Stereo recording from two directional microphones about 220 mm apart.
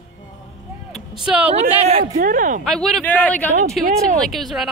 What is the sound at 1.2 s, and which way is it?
Speech, 5° right (ahead or behind).